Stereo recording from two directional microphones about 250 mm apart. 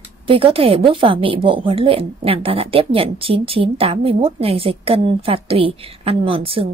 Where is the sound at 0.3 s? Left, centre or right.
Right.